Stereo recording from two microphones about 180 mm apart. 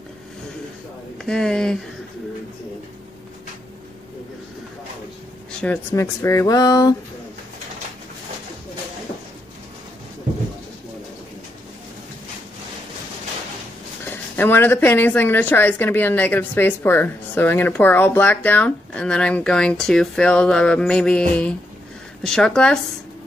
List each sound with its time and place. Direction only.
1.1 s speech: 5° left (ahead or behind)
5.6 s a woman's voice: 10° left (ahead or behind)
14.0 s a woman's voice: 10° left (ahead or behind)